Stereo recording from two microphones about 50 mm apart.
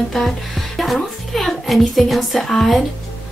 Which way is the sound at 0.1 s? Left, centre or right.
Centre.